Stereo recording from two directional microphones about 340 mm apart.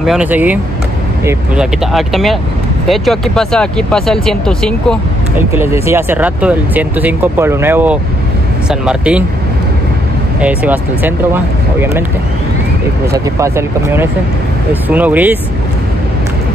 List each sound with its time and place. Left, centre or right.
0.0 s speech: centre
10.4 s speech: centre
13.1 s speech: centre